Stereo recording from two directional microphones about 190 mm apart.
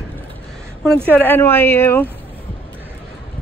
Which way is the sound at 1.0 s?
10° left (ahead or behind).